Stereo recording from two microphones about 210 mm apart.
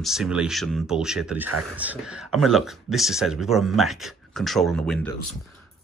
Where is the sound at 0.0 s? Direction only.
Centre (ahead or behind).